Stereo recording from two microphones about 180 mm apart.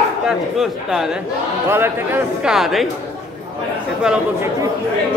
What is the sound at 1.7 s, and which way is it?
Speech, 15° right (ahead or behind).